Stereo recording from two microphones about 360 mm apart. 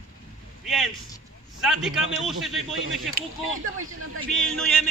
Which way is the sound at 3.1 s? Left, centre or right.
Right.